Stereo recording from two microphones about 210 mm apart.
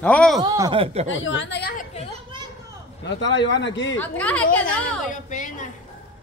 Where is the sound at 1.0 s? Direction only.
60° left (ahead or behind).